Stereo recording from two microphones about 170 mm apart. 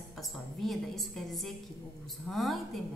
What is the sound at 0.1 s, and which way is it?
A woman's voice, centre (ahead or behind).